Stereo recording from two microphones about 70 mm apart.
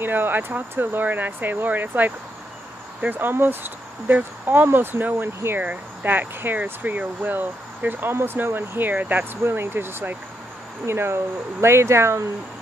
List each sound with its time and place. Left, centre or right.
0.0 s speech: right